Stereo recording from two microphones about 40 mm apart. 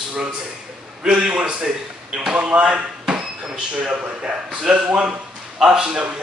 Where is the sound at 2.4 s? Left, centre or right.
Right.